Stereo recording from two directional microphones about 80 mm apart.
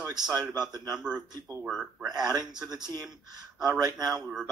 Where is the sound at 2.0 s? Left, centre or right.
Right.